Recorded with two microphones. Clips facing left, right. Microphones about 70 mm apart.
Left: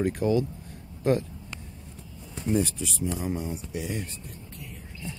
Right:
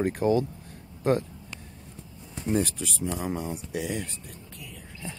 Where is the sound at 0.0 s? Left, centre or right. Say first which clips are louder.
Right 1 dB; right.